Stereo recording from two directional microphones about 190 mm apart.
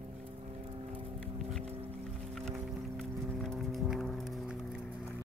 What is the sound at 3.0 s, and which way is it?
Music, centre (ahead or behind).